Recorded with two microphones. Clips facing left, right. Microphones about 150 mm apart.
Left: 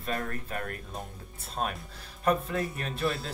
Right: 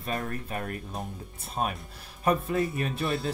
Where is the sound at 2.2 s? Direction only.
10° right (ahead or behind).